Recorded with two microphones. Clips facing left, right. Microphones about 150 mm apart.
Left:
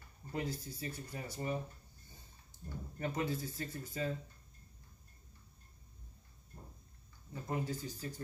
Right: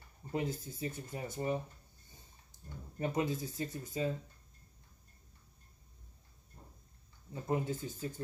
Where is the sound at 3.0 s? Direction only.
20° right (ahead or behind).